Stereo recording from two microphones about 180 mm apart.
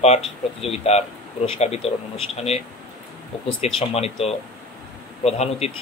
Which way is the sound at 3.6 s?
35° left (ahead or behind).